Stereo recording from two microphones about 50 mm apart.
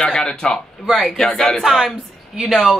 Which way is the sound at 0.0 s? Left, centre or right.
Centre.